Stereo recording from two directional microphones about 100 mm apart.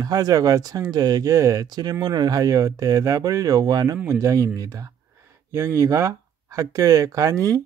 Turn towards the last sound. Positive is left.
turn(degrees=-35)  # may be behind; listen again after turning